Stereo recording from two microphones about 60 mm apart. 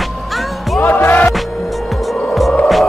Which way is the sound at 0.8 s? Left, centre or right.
Left.